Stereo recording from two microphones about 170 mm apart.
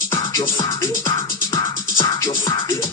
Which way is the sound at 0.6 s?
20° left (ahead or behind).